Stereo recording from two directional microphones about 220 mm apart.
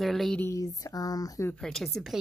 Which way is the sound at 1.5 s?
Centre (ahead or behind).